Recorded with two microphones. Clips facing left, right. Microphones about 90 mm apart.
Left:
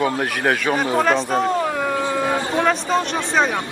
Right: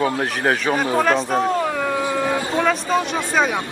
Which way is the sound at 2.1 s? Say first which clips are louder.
Even; 15° left (ahead or behind).